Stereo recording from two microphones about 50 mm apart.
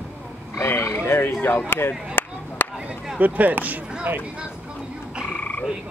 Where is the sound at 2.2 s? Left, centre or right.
Left.